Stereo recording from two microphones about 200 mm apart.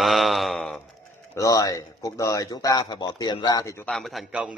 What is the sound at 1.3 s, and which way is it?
Speech, 15° left (ahead or behind).